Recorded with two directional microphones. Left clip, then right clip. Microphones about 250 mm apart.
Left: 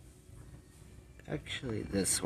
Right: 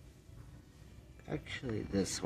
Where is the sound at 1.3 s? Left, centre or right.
Centre.